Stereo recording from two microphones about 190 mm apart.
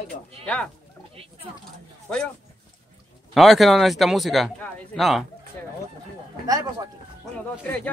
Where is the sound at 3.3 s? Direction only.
Centre (ahead or behind).